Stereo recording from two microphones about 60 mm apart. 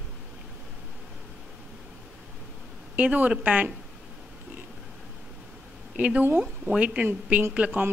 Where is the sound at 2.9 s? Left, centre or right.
Right.